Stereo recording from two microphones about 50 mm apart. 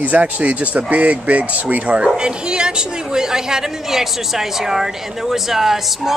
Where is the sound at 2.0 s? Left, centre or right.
Centre.